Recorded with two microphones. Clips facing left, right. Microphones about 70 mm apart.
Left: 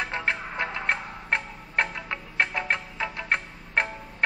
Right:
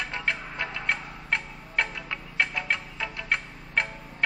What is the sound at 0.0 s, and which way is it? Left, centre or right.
Music, left.